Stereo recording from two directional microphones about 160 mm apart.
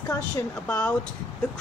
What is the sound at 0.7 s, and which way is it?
Speech, 5° left (ahead or behind).